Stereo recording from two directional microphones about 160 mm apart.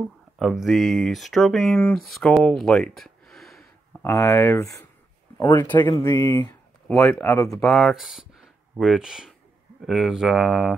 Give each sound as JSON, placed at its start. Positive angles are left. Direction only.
{"t": 0.4, "sound": "speech", "side_deg": 0}
{"t": 4.0, "sound": "speech", "side_deg": 20}
{"t": 7.4, "sound": "speech", "side_deg": 0}